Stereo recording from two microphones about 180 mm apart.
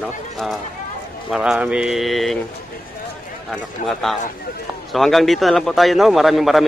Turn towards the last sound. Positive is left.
turn(degrees=0)  # may be behind; listen again after turning